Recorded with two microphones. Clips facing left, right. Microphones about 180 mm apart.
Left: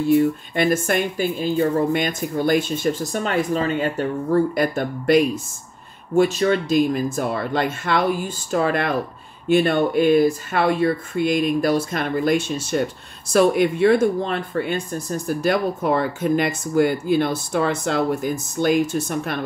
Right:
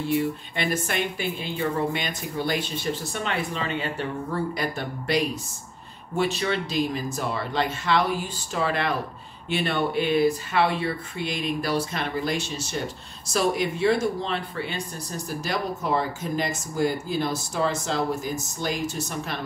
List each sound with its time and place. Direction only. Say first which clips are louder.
0.1 s speech: left 9 dB; 45° left (ahead or behind)